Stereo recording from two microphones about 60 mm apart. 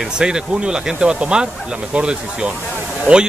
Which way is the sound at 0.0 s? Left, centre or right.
Centre.